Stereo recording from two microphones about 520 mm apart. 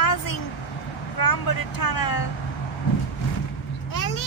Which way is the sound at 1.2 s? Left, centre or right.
Left.